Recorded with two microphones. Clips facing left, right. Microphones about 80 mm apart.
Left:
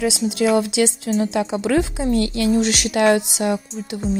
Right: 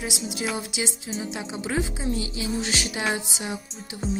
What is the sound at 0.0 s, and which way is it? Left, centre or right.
A woman's voice, left.